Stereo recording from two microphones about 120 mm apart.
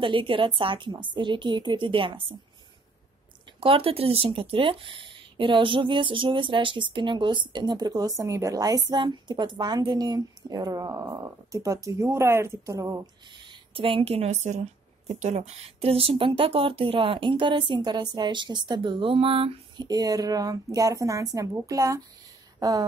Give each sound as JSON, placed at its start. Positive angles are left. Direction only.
{"t": 0.0, "sound": "speech", "side_deg": -45}
{"t": 3.5, "sound": "speech", "side_deg": -50}
{"t": 13.3, "sound": "speech", "side_deg": -40}
{"t": 19.8, "sound": "speech", "side_deg": -30}